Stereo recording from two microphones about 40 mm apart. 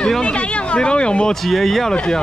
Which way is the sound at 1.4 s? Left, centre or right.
Centre.